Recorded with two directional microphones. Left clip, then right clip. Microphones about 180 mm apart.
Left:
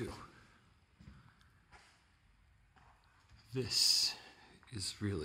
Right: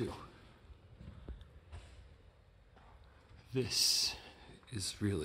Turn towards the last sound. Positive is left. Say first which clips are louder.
# right 2 dB
turn(degrees=-5)  # may be behind; listen again after turning